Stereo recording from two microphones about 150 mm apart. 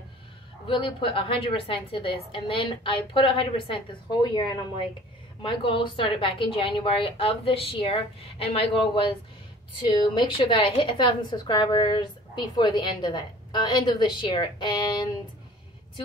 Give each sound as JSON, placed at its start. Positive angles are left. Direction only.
{"t": 0.7, "sound": "a woman's voice", "side_deg": 35}